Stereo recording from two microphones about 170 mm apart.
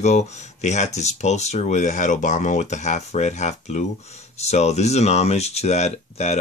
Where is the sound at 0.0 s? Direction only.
40° left (ahead or behind).